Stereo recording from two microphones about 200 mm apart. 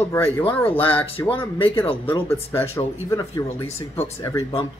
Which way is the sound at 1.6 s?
25° left (ahead or behind).